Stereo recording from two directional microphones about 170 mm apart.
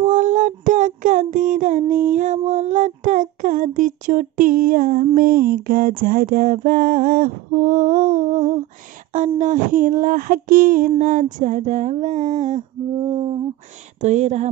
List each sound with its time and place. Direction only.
0.0 s child singing: 50° right (ahead or behind)
5.1 s a sound: 60° right (ahead or behind); by 13.4 s 35° right (ahead or behind)
14.0 s speech: 40° right (ahead or behind)